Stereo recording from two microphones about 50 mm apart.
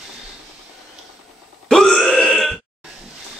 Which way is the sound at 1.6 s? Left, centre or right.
Centre.